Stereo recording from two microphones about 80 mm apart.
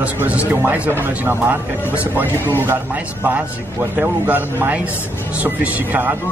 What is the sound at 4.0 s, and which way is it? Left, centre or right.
Speech, right.